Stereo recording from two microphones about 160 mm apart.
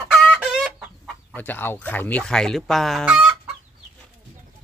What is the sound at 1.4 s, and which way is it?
Speech, 10° left (ahead or behind).